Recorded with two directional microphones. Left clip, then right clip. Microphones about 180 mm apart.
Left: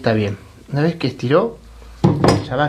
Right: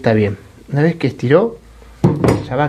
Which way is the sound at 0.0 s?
20° right (ahead or behind).